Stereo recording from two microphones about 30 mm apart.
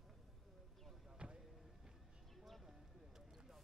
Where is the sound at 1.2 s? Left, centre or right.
Right.